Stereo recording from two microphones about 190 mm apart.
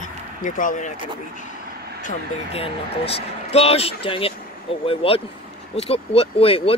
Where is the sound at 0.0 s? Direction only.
40° left (ahead or behind).